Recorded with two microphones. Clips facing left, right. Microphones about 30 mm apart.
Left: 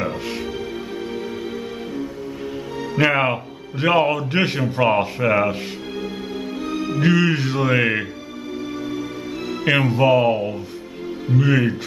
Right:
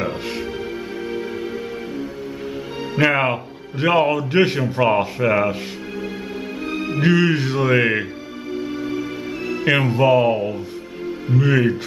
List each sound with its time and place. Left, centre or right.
3.0 s a man's voice: centre
6.6 s music: right
7.0 s a man's voice: centre
9.7 s a man's voice: centre